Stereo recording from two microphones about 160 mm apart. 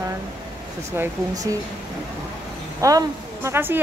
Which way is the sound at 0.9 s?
20° right (ahead or behind).